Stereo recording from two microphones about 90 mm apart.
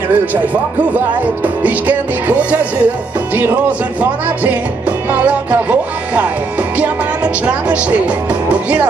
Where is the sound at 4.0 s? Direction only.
15° right (ahead or behind).